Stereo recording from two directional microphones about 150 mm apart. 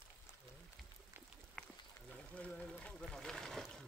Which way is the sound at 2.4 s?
10° left (ahead or behind).